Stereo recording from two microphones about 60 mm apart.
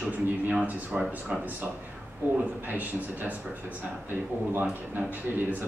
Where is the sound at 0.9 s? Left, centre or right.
Centre.